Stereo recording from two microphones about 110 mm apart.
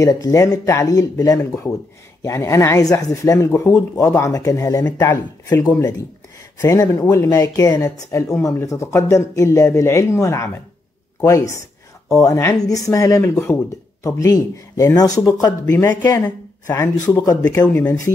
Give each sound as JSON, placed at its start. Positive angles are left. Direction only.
{"t": 0.0, "sound": "speech", "side_deg": 30}